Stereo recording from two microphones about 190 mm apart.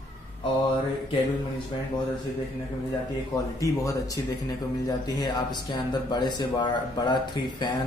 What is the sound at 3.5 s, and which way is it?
Speech, 15° left (ahead or behind).